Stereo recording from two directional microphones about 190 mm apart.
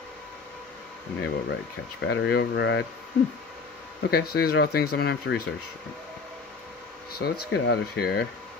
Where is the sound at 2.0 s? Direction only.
65° left (ahead or behind).